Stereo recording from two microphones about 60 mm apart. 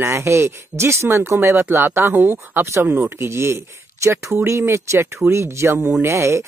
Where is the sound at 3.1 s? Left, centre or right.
Right.